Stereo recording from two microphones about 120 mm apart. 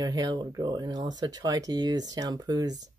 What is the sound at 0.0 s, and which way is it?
Speech, 35° right (ahead or behind).